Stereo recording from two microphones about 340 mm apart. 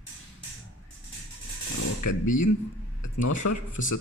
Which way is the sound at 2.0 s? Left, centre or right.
Left.